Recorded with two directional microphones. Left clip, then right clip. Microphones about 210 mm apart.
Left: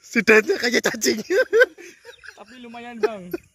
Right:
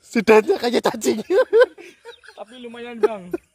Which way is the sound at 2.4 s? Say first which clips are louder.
Right 7 dB; 50° left (ahead or behind).